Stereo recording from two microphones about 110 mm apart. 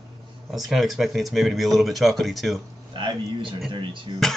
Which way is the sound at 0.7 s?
Centre (ahead or behind).